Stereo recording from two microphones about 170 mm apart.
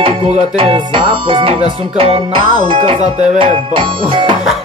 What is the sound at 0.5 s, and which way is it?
Music, 30° right (ahead or behind).